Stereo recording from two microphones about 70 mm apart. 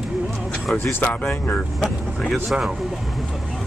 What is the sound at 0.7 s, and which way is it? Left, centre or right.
Speech, left.